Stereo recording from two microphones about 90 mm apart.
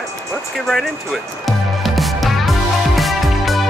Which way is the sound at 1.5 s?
Centre (ahead or behind).